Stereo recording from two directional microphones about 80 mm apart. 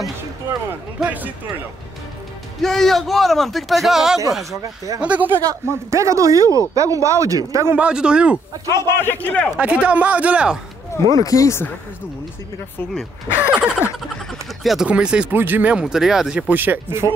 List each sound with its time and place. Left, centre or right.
1.0 s speech: right
2.6 s a man's voice: centre
4.5 s speech: right
5.0 s speech: centre
5.5 s speech: right
7.7 s speech: centre
8.7 s a man's voice: left
9.6 s speech: centre
10.9 s speech: left
13.5 s speech: centre
14.9 s speech: centre
15.3 s speech: right
15.7 s speech: centre
16.3 s speech: centre